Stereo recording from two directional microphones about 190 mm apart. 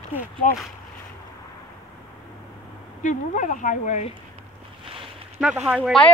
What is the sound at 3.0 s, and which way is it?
Speech, 40° left (ahead or behind).